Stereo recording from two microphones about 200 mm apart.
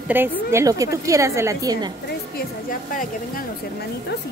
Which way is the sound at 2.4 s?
45° left (ahead or behind).